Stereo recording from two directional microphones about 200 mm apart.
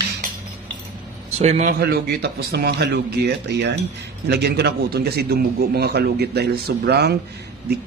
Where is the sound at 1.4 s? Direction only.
35° right (ahead or behind).